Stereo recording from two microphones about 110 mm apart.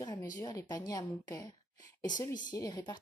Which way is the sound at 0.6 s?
35° left (ahead or behind).